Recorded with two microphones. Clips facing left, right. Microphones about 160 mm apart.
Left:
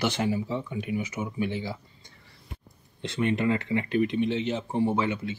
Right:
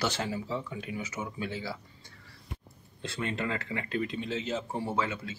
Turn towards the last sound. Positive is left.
turn(degrees=20)  # may be behind; listen again after turning